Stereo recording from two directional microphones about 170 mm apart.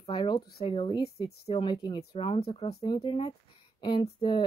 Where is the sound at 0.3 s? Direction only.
35° left (ahead or behind).